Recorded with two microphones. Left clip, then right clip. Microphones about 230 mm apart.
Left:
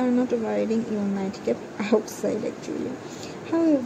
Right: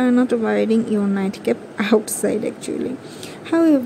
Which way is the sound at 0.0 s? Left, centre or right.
Centre.